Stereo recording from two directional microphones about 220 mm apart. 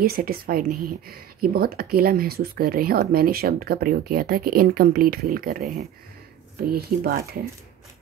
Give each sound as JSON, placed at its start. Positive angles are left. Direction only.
{"t": 0.0, "sound": "a woman's voice", "side_deg": -45}
{"t": 6.7, "sound": "a woman's voice", "side_deg": -45}